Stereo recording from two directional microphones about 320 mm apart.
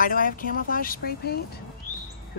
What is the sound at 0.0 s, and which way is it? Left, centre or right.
Speech, left.